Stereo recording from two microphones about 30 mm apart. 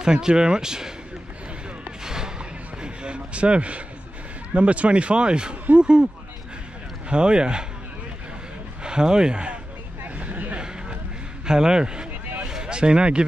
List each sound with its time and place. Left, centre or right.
0.0 s a man's voice: right
2.0 s music: right
2.8 s a man's voice: right
7.1 s speech: right
8.8 s speech: right
10.1 s a sound: right
11.4 s a man's voice: right